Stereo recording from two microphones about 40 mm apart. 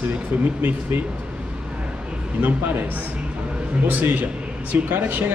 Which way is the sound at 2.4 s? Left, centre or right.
Right.